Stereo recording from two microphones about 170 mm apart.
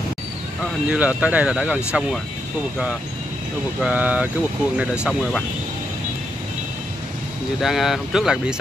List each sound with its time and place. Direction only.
0.8 s speech: 10° right (ahead or behind)
3.8 s speech: 10° right (ahead or behind)
7.6 s speech: centre (ahead or behind)